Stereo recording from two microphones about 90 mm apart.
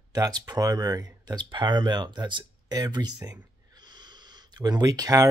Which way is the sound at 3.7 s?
55° right (ahead or behind).